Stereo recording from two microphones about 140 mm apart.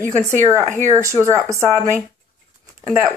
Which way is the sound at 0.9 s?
20° right (ahead or behind).